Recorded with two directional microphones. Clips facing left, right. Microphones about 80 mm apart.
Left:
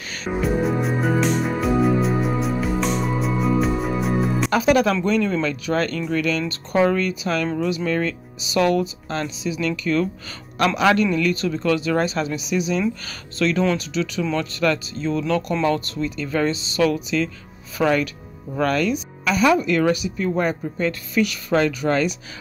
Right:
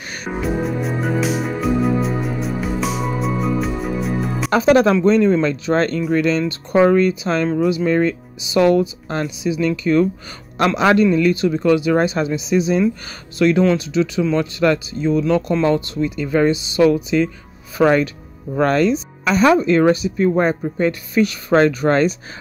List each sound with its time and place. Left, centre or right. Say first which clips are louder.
0.4 s music: even; centre
4.5 s speech: right 6 dB; right
7.4 s speech: right 8 dB; centre
7.7 s speech: right 6 dB; right